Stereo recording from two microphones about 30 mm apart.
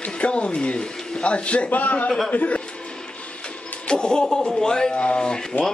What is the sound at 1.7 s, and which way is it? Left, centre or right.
Speech, left.